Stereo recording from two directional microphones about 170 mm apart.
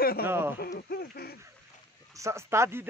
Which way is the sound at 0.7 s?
60° left (ahead or behind).